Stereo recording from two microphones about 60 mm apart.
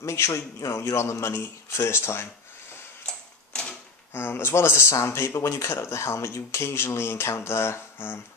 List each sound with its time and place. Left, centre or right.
0.0 s speech: left
3.1 s tick-tock: centre
4.1 s speech: left